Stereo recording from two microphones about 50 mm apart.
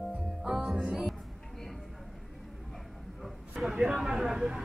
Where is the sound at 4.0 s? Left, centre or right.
Centre.